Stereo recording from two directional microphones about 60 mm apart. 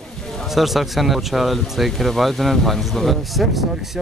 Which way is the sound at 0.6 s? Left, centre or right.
Centre.